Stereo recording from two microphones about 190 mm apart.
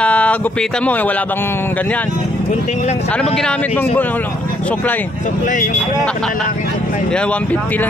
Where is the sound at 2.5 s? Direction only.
40° left (ahead or behind).